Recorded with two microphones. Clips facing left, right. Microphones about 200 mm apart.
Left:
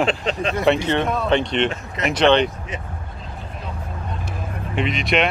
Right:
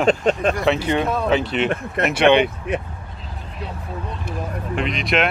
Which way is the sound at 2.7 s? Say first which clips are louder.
Right 8 dB; 60° right (ahead or behind).